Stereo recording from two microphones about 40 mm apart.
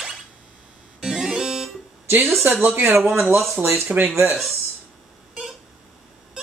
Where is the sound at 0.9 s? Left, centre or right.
Centre.